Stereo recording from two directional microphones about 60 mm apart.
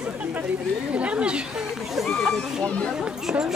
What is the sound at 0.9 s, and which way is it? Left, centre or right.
Speech, right.